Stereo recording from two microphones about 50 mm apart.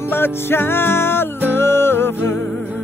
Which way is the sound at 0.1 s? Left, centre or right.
Left.